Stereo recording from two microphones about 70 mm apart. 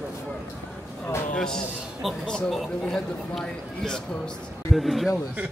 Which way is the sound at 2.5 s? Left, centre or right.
Centre.